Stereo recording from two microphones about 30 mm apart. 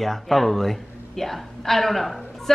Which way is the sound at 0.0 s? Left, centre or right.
Centre.